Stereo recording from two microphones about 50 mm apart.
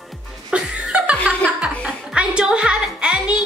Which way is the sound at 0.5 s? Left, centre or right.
Right.